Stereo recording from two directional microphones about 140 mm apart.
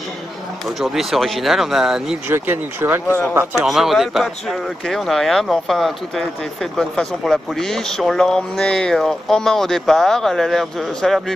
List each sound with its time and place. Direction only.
0.7 s speech: centre (ahead or behind)
2.2 s speech: 15° right (ahead or behind)
3.3 s speech: 5° right (ahead or behind)